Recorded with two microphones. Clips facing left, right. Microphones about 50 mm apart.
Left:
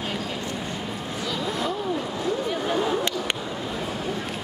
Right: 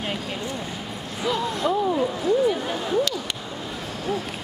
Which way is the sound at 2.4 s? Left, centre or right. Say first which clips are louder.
Right 1 dB; centre.